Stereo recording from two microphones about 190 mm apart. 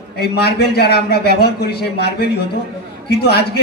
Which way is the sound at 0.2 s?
60° left (ahead or behind).